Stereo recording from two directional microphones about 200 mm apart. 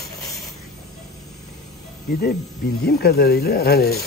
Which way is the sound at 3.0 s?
50° left (ahead or behind).